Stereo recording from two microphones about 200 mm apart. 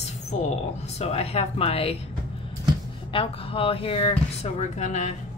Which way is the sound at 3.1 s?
25° left (ahead or behind).